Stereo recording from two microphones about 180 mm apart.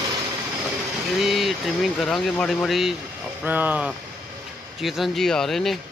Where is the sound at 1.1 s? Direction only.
Centre (ahead or behind).